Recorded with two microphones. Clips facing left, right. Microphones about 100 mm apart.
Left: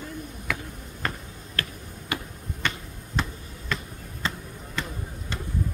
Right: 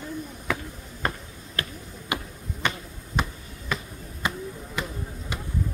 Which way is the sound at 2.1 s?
20° right (ahead or behind).